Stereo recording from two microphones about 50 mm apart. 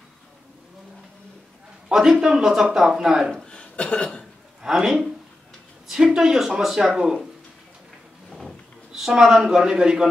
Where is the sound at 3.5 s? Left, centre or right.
Left.